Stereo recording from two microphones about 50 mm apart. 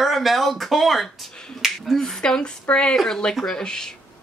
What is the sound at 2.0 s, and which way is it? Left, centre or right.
Speech, centre.